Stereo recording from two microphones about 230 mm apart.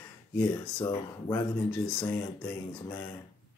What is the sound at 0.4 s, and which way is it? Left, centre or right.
Speech, centre.